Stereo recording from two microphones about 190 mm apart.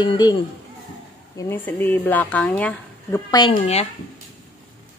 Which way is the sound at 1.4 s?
10° left (ahead or behind).